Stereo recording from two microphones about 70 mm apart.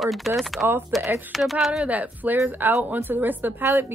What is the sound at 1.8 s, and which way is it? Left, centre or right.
A woman's voice, right.